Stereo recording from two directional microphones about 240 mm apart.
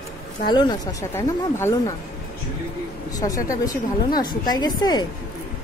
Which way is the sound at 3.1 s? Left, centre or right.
Centre.